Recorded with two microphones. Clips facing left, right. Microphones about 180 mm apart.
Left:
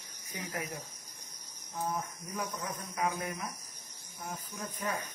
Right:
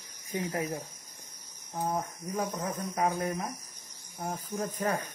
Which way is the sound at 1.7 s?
40° right (ahead or behind).